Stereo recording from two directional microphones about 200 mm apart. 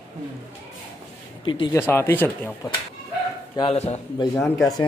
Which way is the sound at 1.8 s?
10° left (ahead or behind).